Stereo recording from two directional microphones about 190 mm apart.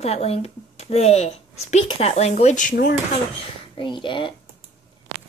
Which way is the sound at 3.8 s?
25° left (ahead or behind).